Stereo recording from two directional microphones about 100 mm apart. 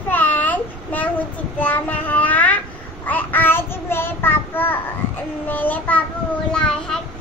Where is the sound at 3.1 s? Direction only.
20° left (ahead or behind).